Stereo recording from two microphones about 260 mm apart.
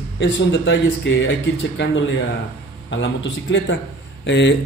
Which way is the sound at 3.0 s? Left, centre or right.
Left.